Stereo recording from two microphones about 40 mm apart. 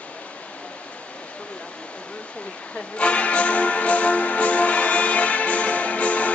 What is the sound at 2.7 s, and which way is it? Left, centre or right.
Music, left.